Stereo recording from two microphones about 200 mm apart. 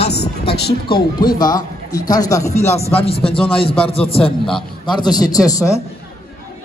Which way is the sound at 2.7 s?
30° left (ahead or behind).